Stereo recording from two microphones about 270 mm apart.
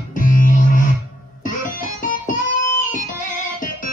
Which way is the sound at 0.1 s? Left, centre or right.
Left.